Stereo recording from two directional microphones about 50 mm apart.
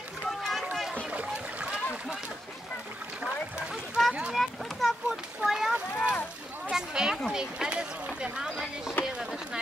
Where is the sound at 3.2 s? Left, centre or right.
Centre.